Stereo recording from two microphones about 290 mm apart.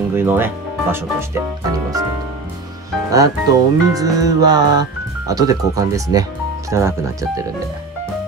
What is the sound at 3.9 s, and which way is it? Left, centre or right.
Speech, centre.